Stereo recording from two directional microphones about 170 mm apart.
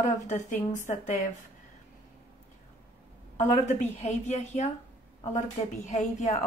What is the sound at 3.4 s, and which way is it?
Speech, 45° left (ahead or behind).